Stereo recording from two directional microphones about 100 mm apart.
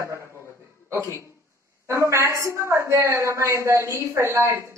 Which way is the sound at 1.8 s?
30° right (ahead or behind).